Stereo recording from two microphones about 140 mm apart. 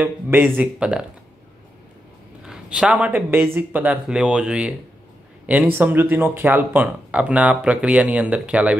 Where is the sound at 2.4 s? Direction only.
5° right (ahead or behind).